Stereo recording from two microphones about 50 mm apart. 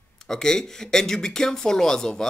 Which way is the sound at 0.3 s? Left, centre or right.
Centre.